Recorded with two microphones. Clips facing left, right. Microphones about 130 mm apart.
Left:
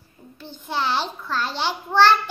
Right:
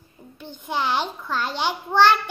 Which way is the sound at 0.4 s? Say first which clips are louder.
Even; 15° right (ahead or behind).